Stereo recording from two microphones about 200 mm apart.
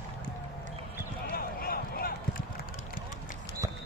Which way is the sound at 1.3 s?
50° left (ahead or behind).